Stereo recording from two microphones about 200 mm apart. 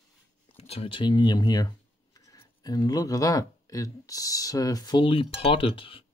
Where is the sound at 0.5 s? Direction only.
30° left (ahead or behind).